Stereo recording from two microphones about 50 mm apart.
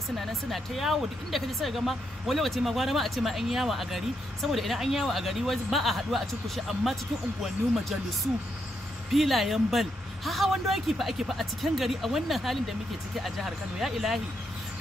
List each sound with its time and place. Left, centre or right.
0.2 s speech: centre
9.1 s speech: centre